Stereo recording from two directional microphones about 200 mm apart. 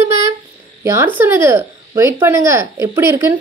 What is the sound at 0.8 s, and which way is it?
Speech, 15° right (ahead or behind).